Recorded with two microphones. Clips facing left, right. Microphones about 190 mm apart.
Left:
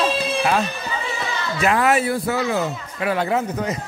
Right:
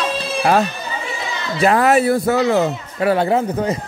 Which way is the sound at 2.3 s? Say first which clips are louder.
Right 6 dB; 70° right (ahead or behind).